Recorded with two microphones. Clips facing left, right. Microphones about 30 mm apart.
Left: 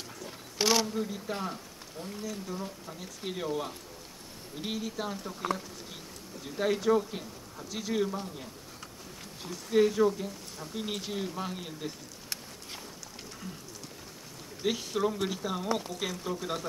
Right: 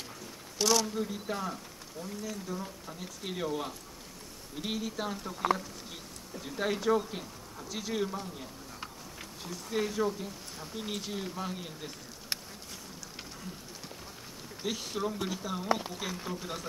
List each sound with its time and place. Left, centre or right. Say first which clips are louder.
0.6 s speech: left 1 dB; left
0.8 s speech: left 1 dB; centre
1.3 s speech: even; centre
2.0 s speech: left 1 dB; left
2.6 s speech: left 1 dB; centre
14.6 s speech: left 4 dB; centre
15.7 s speech: right 4 dB; centre
16.3 s speech: left 3 dB; centre